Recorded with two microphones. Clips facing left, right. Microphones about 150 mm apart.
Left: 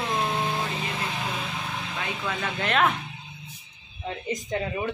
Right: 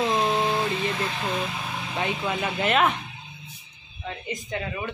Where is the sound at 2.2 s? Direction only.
15° right (ahead or behind).